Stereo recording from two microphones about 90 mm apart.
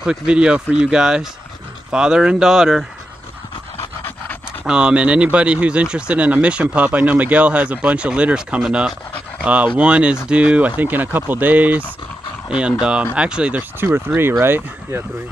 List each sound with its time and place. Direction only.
0.0 s speech: 10° right (ahead or behind)
4.6 s speech: 10° right (ahead or behind); by 15.0 s 25° right (ahead or behind)